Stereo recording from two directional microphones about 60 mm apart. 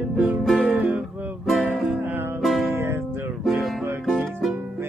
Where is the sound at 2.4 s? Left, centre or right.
Centre.